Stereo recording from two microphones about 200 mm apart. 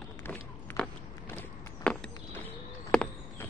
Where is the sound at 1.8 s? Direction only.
5° left (ahead or behind).